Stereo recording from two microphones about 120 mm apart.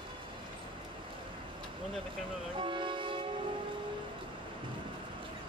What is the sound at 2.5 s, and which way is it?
Music, 45° right (ahead or behind).